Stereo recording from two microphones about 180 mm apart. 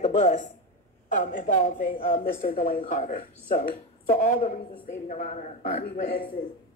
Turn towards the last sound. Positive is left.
turn(degrees=50)  # may be behind; listen again after turning